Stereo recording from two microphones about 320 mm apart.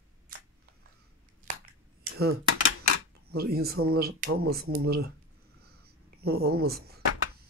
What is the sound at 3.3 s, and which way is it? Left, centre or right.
Speech, right.